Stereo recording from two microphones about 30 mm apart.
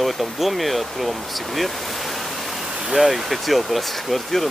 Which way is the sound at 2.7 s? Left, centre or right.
Right.